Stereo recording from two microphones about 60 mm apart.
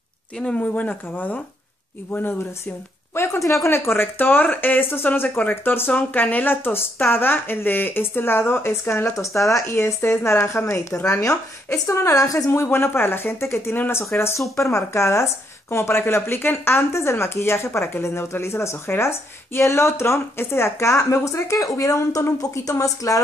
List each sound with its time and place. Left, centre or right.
0.6 s speech: left
3.2 s a woman's voice: left
12.4 s speech: left
14.6 s speech: left
21.5 s a woman's voice: left